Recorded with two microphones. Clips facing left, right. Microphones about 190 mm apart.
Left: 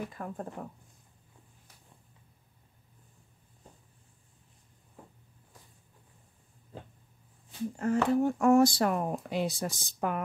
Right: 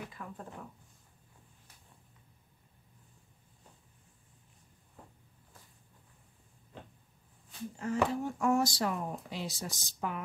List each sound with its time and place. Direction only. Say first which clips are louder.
0.1 s speech: left 6 dB; 45° left (ahead or behind)
7.7 s speech: left 5 dB; 55° left (ahead or behind)